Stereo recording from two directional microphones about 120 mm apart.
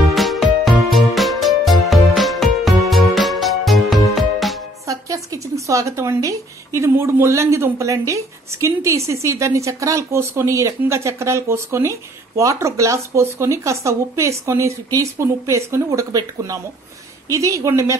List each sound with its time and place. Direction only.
0.1 s music: centre (ahead or behind)
4.8 s a woman's voice: 30° right (ahead or behind)